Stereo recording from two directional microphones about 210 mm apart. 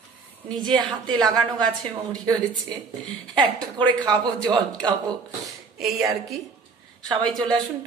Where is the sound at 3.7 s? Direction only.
20° right (ahead or behind).